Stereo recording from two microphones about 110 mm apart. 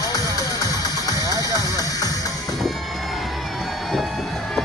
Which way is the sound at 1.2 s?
35° right (ahead or behind).